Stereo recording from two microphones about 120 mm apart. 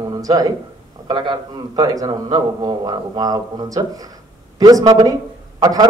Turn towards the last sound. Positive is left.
turn(degrees=-30)  # may be behind; listen again after turning